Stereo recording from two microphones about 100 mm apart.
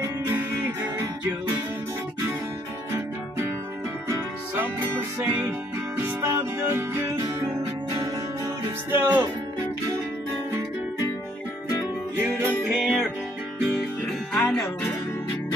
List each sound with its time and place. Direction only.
0.4 s music: 25° right (ahead or behind)
4.1 s music: 20° right (ahead or behind)
8.9 s speech: 20° right (ahead or behind)
12.2 s music: 25° right (ahead or behind)
12.8 s music: 10° right (ahead or behind)
14.3 s music: 10° left (ahead or behind)